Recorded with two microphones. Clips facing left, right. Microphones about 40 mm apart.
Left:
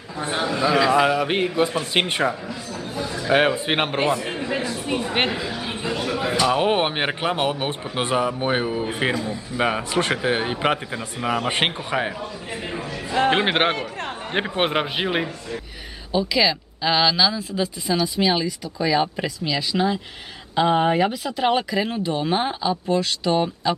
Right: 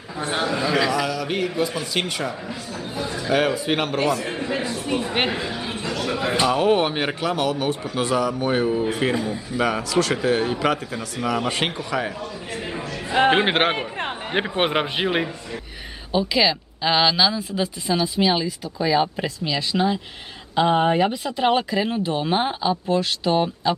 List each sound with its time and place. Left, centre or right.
0.3 s speech: centre
0.9 s a man's voice: left
2.4 s a sound: centre
3.3 s a man's voice: left
4.2 s speech: centre
5.7 s a sound: centre
6.0 s a man's voice: centre
6.5 s a man's voice: left
12.5 s a sound: centre
13.3 s speech: centre
13.7 s a man's voice: right
14.3 s speech: centre
16.1 s speech: centre